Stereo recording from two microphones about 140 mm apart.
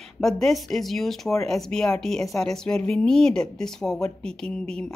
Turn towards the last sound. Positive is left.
turn(degrees=5)  # may be behind; listen again after turning